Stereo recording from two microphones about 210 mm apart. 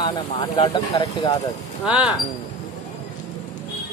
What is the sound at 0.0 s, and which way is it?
Speech, 20° left (ahead or behind).